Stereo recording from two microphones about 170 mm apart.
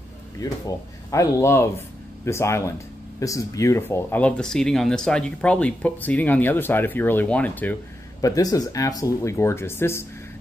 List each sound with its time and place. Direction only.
1.1 s speech: 15° left (ahead or behind)
8.2 s speech: 20° left (ahead or behind)